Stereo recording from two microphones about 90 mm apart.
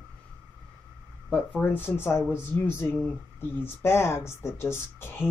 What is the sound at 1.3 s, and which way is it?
Speech, 10° left (ahead or behind).